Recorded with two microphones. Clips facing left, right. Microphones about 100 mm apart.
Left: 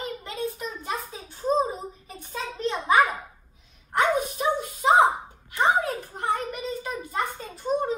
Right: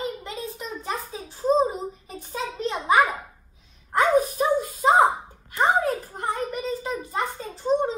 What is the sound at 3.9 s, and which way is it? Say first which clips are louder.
Dog: right 4 dB; 35° right (ahead or behind).